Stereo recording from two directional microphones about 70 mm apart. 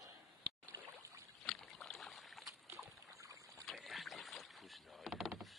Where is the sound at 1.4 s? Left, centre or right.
Centre.